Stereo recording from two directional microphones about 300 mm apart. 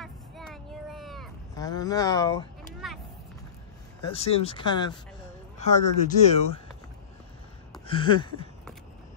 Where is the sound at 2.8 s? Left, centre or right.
Centre.